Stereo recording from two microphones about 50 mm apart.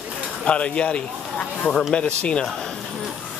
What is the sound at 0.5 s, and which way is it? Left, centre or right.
Speech, left.